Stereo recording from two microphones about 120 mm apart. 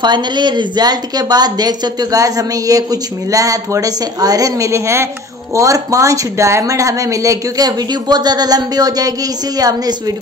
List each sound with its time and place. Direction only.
0.0 s a woman's voice: 40° right (ahead or behind)